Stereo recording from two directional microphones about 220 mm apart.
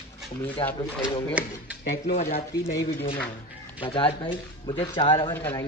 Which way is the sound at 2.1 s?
35° left (ahead or behind).